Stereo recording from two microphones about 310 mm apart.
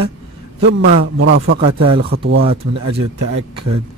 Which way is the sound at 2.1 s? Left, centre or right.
Right.